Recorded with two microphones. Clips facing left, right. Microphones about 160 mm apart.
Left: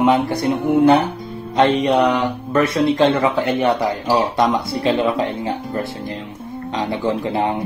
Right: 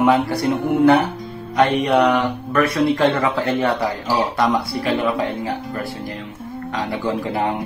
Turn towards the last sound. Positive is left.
turn(degrees=25)  # may be behind; listen again after turning